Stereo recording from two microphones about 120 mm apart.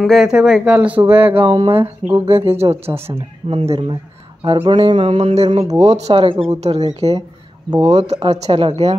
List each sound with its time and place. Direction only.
0.0 s speech: centre (ahead or behind); by 1.4 s 15° right (ahead or behind)
1.4 s speech: 50° right (ahead or behind)
1.8 s speech: 15° right (ahead or behind)
2.2 s speech: 55° right (ahead or behind)
2.6 s mantra: 55° right (ahead or behind)
4.4 s speech: 45° right (ahead or behind)
5.1 s mantra: 60° right (ahead or behind)
6.1 s speech: 45° right (ahead or behind)
6.5 s mantra: 60° right (ahead or behind)
8.2 s speech: 50° right (ahead or behind)